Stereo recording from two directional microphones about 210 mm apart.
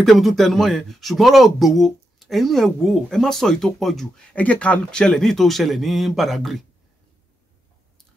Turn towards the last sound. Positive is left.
turn(degrees=0)  # may be behind; listen again after turning